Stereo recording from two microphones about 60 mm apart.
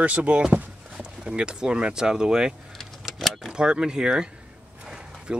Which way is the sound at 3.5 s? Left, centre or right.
Centre.